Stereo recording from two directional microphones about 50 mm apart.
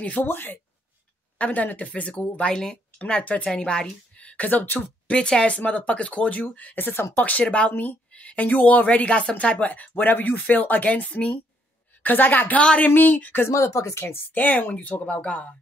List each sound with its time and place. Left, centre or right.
0.2 s speech: left
1.4 s a woman's voice: left
5.1 s a woman's voice: centre; by 7.4 s left
7.4 s a woman's voice: left
7.7 s speech: left
8.1 s a woman's voice: left
12.0 s speech: left
12.5 s a woman's voice: left
12.8 s speech: left
13.5 s speech: left
14.3 s a woman's voice: left